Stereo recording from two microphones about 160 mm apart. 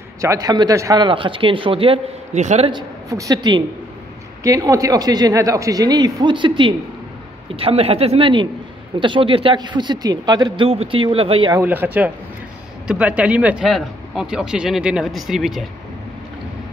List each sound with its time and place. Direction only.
0.2 s speech: 20° right (ahead or behind); by 2.7 s 45° right (ahead or behind)
2.7 s a man's voice: 20° right (ahead or behind)
11.5 s speech: 10° right (ahead or behind)